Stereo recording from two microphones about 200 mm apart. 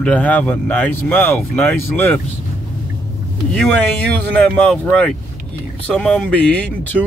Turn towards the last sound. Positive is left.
turn(degrees=5)  # may be behind; listen again after turning